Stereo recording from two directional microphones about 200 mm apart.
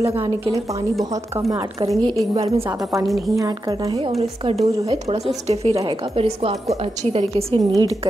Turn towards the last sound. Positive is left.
turn(degrees=-20)  # may be behind; listen again after turning